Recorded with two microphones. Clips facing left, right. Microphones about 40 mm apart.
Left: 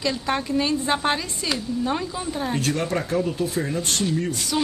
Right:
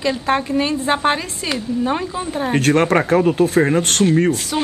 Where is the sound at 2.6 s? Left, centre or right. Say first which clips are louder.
Right 12 dB; right.